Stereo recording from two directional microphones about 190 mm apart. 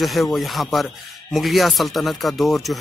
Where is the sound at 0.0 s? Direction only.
Centre (ahead or behind).